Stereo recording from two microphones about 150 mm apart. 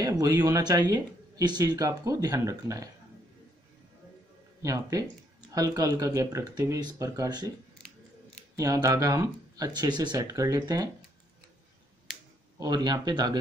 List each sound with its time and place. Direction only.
0.0 s speech: 25° right (ahead or behind)
4.6 s speech: 20° right (ahead or behind)
8.5 s speech: 25° right (ahead or behind)
12.5 s speech: 25° right (ahead or behind)